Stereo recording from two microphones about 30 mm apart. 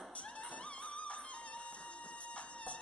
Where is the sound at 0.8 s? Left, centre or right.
Left.